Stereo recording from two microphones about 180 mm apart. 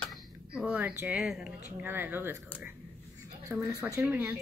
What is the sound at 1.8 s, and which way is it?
Speech, 10° right (ahead or behind).